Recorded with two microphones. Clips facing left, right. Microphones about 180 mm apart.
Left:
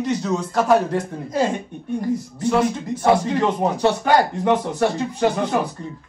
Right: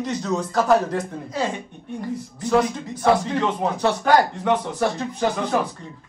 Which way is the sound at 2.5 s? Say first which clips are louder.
Left 1 dB; centre (ahead or behind).